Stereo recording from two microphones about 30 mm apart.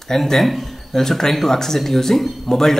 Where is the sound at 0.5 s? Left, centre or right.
Centre.